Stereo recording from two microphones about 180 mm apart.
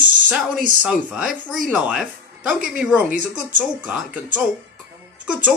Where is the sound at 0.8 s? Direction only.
5° right (ahead or behind).